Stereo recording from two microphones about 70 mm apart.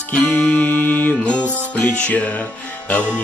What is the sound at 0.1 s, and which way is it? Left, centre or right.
Music, left.